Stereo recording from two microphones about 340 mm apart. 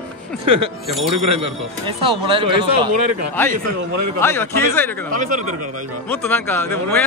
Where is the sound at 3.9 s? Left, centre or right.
Right.